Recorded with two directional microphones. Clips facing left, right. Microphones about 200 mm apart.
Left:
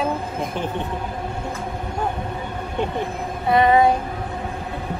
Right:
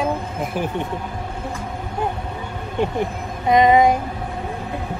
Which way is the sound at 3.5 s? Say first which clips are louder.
Right 2 dB; 15° right (ahead or behind).